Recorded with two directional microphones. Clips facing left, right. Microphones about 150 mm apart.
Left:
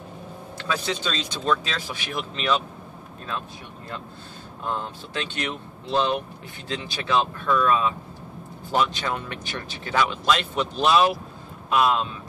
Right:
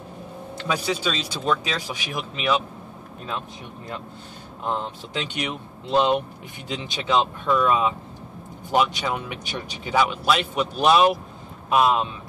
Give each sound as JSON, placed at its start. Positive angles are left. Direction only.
{"t": 0.6, "sound": "speech", "side_deg": -15}
{"t": 4.6, "sound": "speech", "side_deg": -20}